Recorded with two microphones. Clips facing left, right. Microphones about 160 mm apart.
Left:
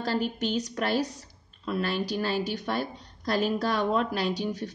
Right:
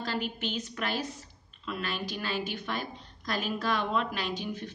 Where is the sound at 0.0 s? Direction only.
40° left (ahead or behind).